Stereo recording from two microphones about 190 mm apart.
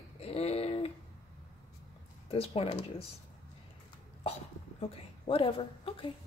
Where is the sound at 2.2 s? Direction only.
30° left (ahead or behind).